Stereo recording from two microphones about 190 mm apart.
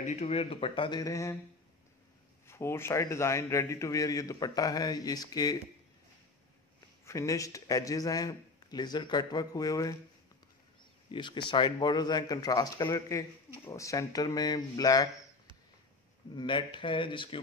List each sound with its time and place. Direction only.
0.0 s a man's voice: 35° left (ahead or behind); by 1.4 s 15° left (ahead or behind)
2.4 s a man's voice: 15° left (ahead or behind)
7.1 s a man's voice: 15° left (ahead or behind)
11.1 s a man's voice: 25° left (ahead or behind)
16.3 s a man's voice: 25° left (ahead or behind)